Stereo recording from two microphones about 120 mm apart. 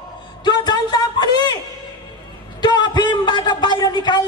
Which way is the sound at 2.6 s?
35° left (ahead or behind).